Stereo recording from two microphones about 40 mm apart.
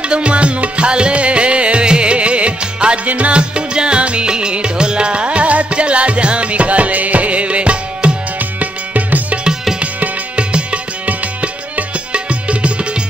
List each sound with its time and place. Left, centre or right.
0.0 s music: right
8.4 s music: right